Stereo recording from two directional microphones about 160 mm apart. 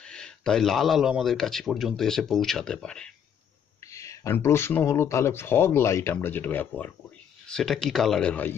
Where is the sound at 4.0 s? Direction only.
15° left (ahead or behind).